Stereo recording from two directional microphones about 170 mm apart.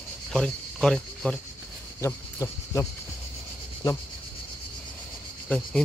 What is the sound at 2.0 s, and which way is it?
Speech, 15° left (ahead or behind).